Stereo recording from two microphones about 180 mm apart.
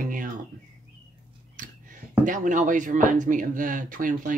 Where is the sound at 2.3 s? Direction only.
45° right (ahead or behind).